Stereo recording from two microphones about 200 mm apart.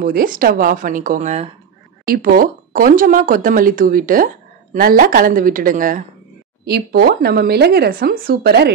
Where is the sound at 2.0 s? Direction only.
45° right (ahead or behind).